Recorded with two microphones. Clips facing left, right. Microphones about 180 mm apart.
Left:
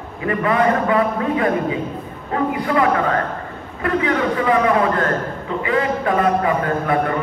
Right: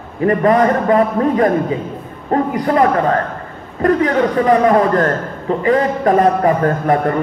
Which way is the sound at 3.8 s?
40° right (ahead or behind).